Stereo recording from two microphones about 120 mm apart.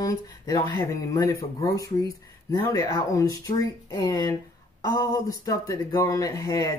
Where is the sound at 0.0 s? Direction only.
30° left (ahead or behind).